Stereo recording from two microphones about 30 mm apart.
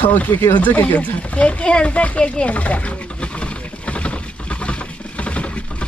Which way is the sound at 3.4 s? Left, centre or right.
Left.